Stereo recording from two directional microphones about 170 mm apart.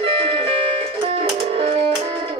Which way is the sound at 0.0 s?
35° right (ahead or behind).